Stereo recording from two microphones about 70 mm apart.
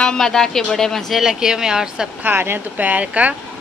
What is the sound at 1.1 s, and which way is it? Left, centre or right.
Speech, centre.